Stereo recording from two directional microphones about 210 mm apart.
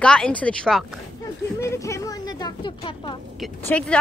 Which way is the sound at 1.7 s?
15° left (ahead or behind).